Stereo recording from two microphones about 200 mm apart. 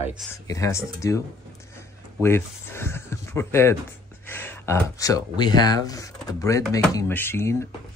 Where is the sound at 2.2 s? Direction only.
10° left (ahead or behind).